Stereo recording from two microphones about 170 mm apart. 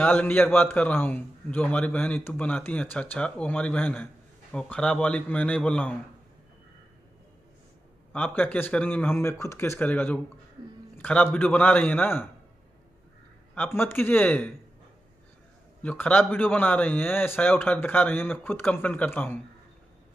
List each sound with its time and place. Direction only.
0.0 s a man's voice: 10° left (ahead or behind)
8.1 s a man's voice: 10° left (ahead or behind)
13.6 s a man's voice: 15° left (ahead or behind)
15.8 s a man's voice: 10° left (ahead or behind)